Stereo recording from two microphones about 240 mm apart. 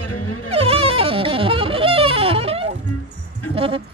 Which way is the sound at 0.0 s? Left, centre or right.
Left.